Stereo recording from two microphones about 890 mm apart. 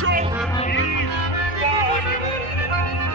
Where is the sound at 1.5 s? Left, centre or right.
Left.